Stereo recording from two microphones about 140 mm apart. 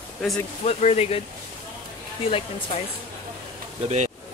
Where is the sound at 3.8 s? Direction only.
55° right (ahead or behind).